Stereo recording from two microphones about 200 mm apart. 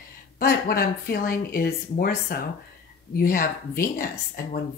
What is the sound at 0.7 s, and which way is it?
Speech, 45° left (ahead or behind).